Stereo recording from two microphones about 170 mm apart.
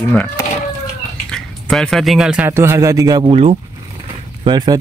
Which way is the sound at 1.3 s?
5° left (ahead or behind).